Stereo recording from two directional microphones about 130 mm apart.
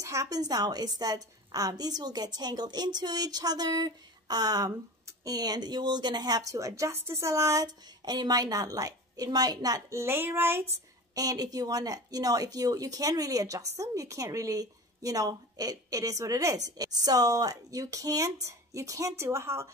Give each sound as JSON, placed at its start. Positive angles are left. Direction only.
{"t": 0.0, "sound": "a woman's voice", "side_deg": -25}
{"t": 11.1, "sound": "a woman's voice", "side_deg": -30}